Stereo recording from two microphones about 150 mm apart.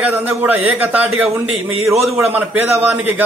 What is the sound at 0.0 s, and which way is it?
Speech, 10° right (ahead or behind).